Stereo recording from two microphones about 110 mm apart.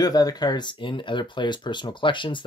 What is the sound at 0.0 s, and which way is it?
Speech, 35° left (ahead or behind).